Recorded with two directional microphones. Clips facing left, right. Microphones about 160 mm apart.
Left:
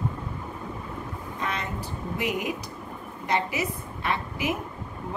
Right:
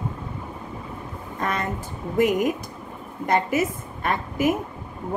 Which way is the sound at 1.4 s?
50° right (ahead or behind).